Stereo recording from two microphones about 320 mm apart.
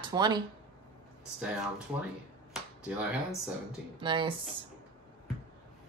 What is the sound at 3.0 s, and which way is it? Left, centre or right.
Speech, centre.